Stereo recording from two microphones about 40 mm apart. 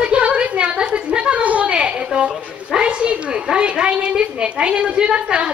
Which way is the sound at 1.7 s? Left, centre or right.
Right.